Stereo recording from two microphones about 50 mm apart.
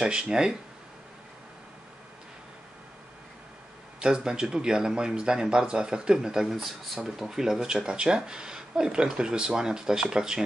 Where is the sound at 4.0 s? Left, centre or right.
Centre.